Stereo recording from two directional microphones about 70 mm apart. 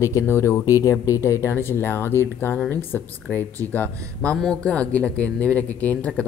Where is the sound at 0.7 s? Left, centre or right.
Left.